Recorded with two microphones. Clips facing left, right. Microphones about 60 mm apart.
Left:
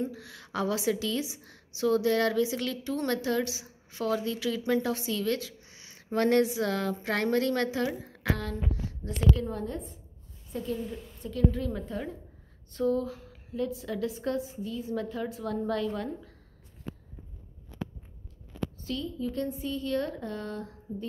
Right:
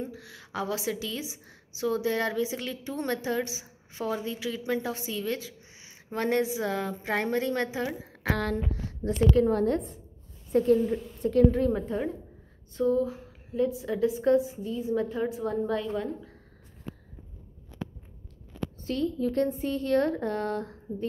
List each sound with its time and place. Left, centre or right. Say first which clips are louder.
0.0 s a woman's voice: left 3 dB; centre
9.5 s a woman's voice: right 9 dB; right
10.5 s speech: right 11 dB; right
11.7 s a woman's voice: right 6 dB; right
12.7 s a woman's voice: right 3 dB; centre
18.8 s speech: right 8 dB; right